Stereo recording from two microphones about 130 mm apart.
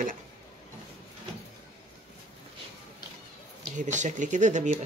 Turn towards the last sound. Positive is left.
turn(degrees=-70)  # may be behind; listen again after turning